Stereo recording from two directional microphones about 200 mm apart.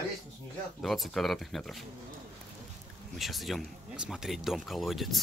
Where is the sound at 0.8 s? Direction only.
Centre (ahead or behind).